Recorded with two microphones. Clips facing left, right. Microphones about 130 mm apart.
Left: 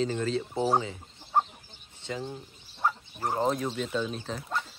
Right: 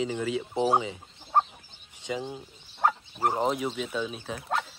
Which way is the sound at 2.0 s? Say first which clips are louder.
Right 2 dB; 15° right (ahead or behind).